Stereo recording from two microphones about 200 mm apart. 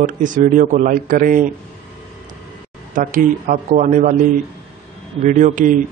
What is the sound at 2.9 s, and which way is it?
Speech, 40° right (ahead or behind).